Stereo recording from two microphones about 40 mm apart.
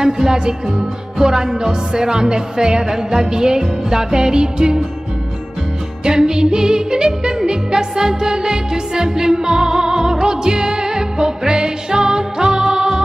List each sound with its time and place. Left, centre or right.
0.0 s yodeling: centre
6.0 s yodeling: centre